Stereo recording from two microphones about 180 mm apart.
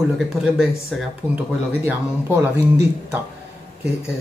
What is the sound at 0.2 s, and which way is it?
Speech, centre (ahead or behind).